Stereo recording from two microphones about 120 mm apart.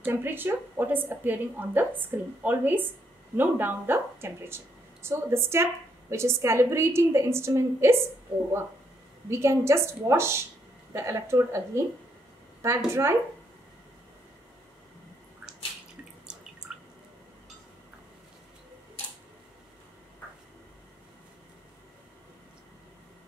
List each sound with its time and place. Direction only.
0.0 s a woman's voice: 15° right (ahead or behind)
9.3 s a woman's voice: 25° right (ahead or behind)
16.3 s drip: 5° right (ahead or behind)